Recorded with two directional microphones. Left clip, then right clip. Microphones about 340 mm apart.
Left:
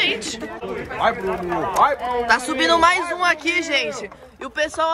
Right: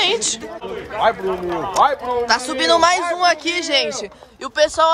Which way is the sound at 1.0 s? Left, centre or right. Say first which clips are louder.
Right 3 dB; right.